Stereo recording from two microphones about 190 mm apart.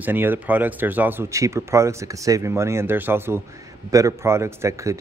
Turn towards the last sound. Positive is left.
turn(degrees=-15)  # may be behind; listen again after turning